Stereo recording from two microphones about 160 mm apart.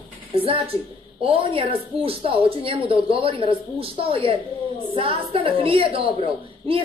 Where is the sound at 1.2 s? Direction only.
35° right (ahead or behind).